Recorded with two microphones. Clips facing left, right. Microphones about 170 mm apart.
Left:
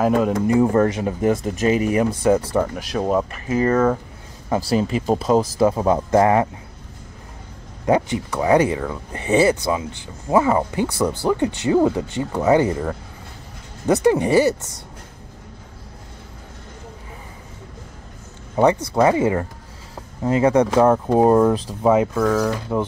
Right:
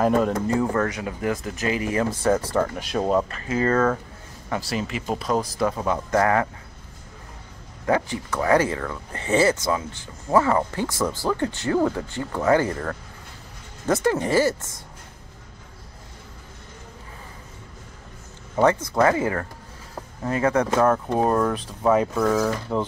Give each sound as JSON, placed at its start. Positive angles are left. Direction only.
{"t": 0.0, "sound": "speech", "side_deg": 5}
{"t": 0.3, "sound": "speech", "side_deg": 20}
{"t": 2.7, "sound": "speech", "side_deg": 0}
{"t": 4.5, "sound": "speech", "side_deg": 35}
{"t": 5.3, "sound": "speech", "side_deg": 25}
{"t": 7.8, "sound": "speech", "side_deg": 20}
{"t": 18.6, "sound": "speech", "side_deg": 15}
{"t": 22.1, "sound": "speech", "side_deg": -5}